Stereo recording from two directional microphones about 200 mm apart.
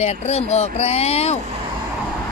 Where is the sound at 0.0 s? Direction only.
35° left (ahead or behind).